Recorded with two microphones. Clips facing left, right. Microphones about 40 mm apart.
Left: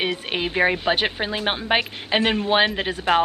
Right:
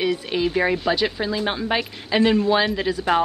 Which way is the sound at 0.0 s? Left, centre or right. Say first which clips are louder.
Right 3 dB; left.